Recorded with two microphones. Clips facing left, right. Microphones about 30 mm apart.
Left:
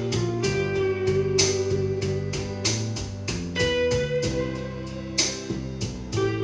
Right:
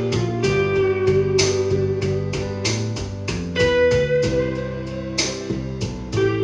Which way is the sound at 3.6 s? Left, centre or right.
Centre.